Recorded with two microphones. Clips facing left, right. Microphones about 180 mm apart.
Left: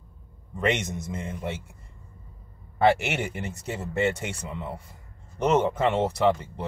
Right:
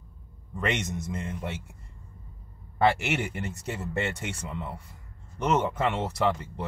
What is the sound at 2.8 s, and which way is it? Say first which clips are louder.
Speech: left 2 dB; 25° left (ahead or behind).